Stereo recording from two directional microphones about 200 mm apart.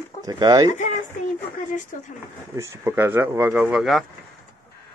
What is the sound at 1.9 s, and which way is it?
Speech, 40° left (ahead or behind).